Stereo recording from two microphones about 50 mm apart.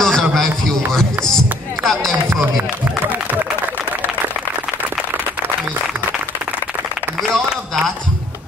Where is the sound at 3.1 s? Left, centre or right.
Right.